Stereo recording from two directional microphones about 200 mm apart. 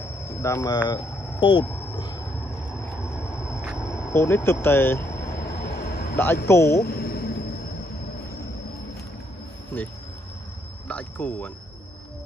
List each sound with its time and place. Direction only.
0.0 s vehicle: 15° left (ahead or behind)
2.7 s vehicle: centre (ahead or behind)
4.1 s speech: 15° left (ahead or behind)
5.3 s vehicle: 50° left (ahead or behind)
6.4 s speech: 15° left (ahead or behind)
6.7 s a sound: 50° left (ahead or behind)
10.9 s speech: 5° left (ahead or behind)